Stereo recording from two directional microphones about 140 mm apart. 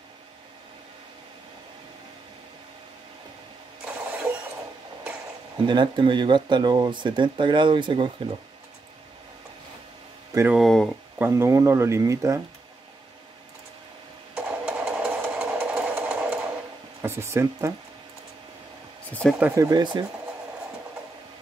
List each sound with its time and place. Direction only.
3.8 s engine starting: 10° right (ahead or behind)
5.6 s speech: 35° right (ahead or behind)
10.5 s speech: centre (ahead or behind)
11.1 s speech: 15° right (ahead or behind)
14.3 s a sound: 10° right (ahead or behind)
17.0 s speech: 20° right (ahead or behind)
19.0 s speech: 10° left (ahead or behind)
19.5 s speech: 25° right (ahead or behind)